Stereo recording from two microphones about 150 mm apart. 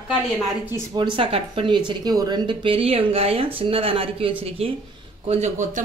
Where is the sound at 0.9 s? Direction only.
35° right (ahead or behind).